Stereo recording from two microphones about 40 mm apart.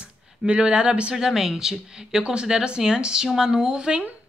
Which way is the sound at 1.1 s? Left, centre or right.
Centre.